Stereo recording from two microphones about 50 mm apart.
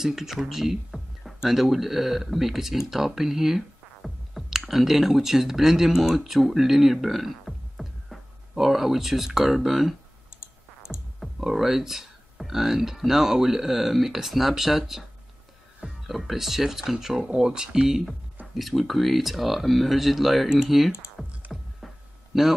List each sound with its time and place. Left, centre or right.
0.0 s speech: centre
10.4 s music: left
11.1 s speech: centre
18.6 s speech: centre
21.5 s a sound: centre